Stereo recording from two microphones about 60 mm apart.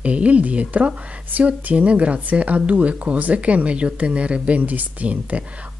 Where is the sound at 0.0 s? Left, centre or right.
Right.